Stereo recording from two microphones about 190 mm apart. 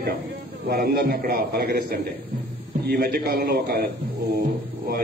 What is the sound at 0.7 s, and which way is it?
A man's voice, 55° right (ahead or behind).